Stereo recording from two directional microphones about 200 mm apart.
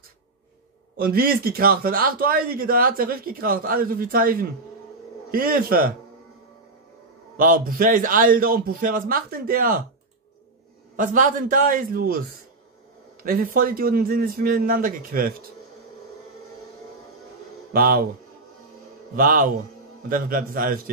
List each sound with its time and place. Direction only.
0.9 s speech: 50° right (ahead or behind)
7.3 s speech: 45° right (ahead or behind)
11.0 s speech: 40° right (ahead or behind)
13.2 s speech: 45° right (ahead or behind)
17.7 s speech: 45° right (ahead or behind)
19.1 s speech: 45° right (ahead or behind)